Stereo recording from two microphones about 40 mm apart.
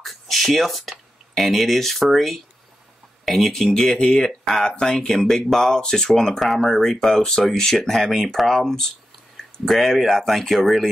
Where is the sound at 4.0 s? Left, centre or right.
Centre.